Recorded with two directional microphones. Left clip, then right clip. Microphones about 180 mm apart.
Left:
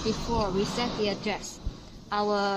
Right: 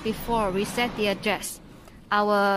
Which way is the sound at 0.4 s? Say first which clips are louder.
Right 4 dB; 65° right (ahead or behind).